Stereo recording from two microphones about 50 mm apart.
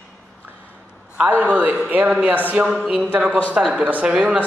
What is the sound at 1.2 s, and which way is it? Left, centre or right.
Speech, right.